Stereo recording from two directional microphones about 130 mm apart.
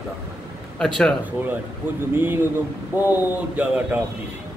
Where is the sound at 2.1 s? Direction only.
15° right (ahead or behind).